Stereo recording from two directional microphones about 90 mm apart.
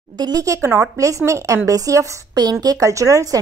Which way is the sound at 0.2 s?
40° right (ahead or behind).